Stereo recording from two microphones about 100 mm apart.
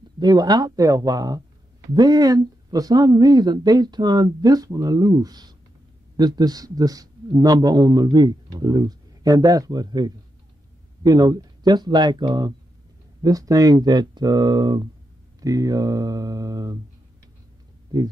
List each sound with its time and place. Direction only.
0.2 s a man's voice: 40° right (ahead or behind)
13.2 s a man's voice: 35° right (ahead or behind)